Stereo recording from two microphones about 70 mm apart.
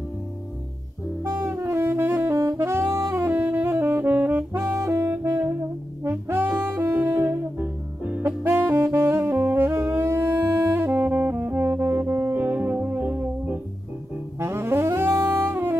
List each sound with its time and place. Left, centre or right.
1.3 s saxophone: right
2.3 s saxophone: right
4.7 s saxophone: right
6.0 s brass instrument: right
8.2 s saxophone: right
10.8 s saxophone: right
12.3 s music: right
14.4 s saxophone: right